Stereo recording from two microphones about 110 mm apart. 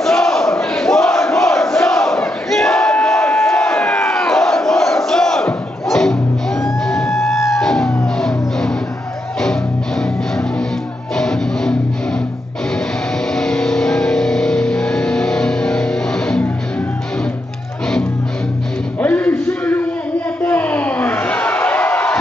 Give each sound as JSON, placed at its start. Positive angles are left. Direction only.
{"t": 0.0, "sound": "battle cry", "side_deg": 5}
{"t": 6.6, "sound": "music", "side_deg": 0}
{"t": 13.3, "sound": "vehicle", "side_deg": 5}
{"t": 18.9, "sound": "music", "side_deg": 15}
{"t": 20.4, "sound": "a sound", "side_deg": 15}